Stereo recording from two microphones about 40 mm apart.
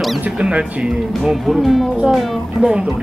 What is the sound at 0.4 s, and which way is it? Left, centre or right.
Speech, right.